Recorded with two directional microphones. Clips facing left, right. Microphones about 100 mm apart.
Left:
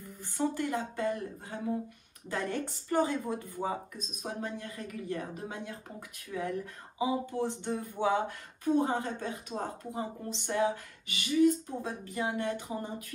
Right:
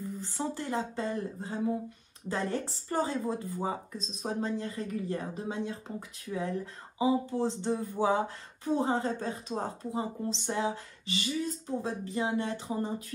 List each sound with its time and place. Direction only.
0.4 s speech: 25° right (ahead or behind)
9.9 s speech: 25° right (ahead or behind)